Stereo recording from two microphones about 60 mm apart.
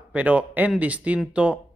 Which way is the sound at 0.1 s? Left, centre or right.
Right.